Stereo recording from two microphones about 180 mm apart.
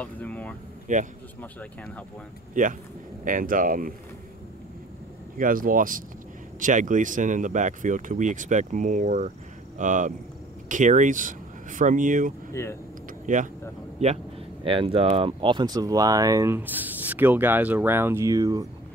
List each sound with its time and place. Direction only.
0.0 s speech: 10° left (ahead or behind)
0.9 s speech: 45° right (ahead or behind)
1.4 s speech: 10° left (ahead or behind)
2.6 s speech: 45° right (ahead or behind)
5.4 s speech: 50° right (ahead or behind)
12.6 s speech: 15° left (ahead or behind)
13.3 s speech: 45° right (ahead or behind); by 18.7 s 20° right (ahead or behind)